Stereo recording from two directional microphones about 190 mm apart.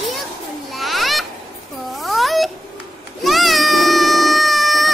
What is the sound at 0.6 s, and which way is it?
Children playing, centre (ahead or behind).